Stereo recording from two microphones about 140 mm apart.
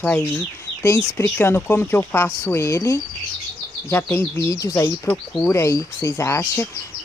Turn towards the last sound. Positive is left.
turn(degrees=20)  # may be behind; listen again after turning